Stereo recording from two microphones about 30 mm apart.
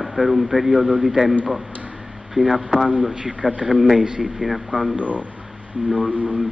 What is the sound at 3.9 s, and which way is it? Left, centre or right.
Speech, right.